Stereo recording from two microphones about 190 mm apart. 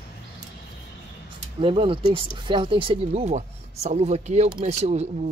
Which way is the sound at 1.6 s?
25° right (ahead or behind).